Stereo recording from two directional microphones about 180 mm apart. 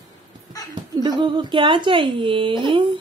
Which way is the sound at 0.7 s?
25° right (ahead or behind).